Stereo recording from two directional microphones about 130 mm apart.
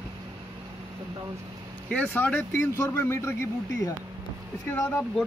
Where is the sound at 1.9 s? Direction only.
10° left (ahead or behind).